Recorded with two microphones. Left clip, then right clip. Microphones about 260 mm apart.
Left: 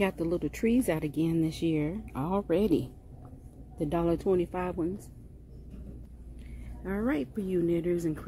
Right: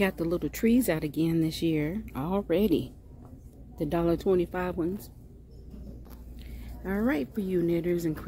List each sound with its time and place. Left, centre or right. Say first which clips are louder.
0.0 s speech: right 1 dB; centre
6.8 s speech: right 2 dB; centre